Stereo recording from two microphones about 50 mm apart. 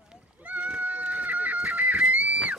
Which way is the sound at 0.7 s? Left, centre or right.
Right.